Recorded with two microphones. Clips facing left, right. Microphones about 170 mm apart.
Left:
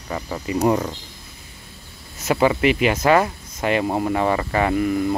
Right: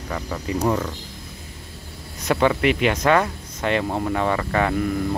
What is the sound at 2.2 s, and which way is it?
Speech, 5° left (ahead or behind).